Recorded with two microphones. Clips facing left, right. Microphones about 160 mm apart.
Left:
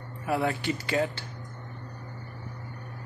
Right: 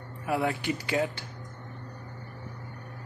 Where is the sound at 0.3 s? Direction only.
15° right (ahead or behind).